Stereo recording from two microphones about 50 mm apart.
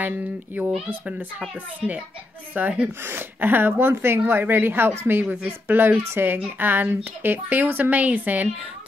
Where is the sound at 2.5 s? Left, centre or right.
Right.